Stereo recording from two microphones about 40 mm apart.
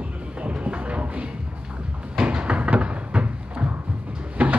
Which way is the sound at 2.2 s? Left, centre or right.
Right.